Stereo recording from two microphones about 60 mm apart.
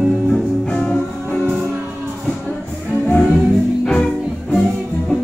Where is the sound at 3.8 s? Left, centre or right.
Centre.